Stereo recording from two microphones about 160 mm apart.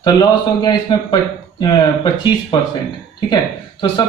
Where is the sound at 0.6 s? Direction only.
25° left (ahead or behind).